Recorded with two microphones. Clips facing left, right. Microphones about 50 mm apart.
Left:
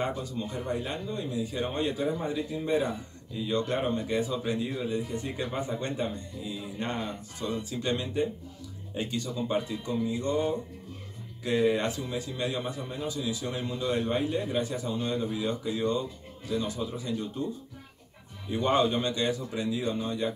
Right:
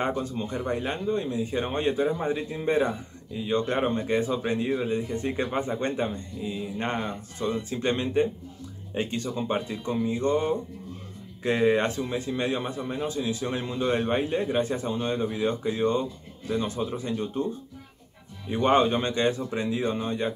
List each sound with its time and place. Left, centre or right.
0.0 s speech: right
18.5 s speech: right